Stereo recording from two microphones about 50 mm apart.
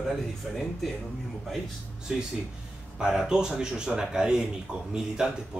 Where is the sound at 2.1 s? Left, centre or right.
Centre.